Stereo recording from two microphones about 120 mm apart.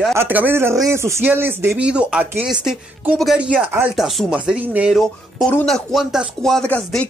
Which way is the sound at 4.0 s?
Centre (ahead or behind).